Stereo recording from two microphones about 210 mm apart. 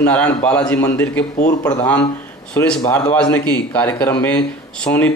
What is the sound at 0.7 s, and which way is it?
Speech, 15° left (ahead or behind).